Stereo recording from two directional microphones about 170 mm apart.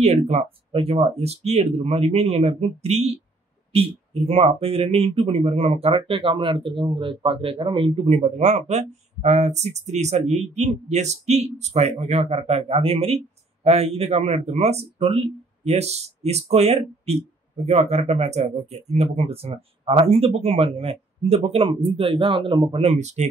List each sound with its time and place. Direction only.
0.0 s speech: 40° right (ahead or behind)